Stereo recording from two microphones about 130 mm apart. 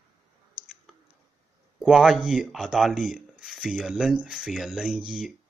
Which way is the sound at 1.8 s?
5° right (ahead or behind).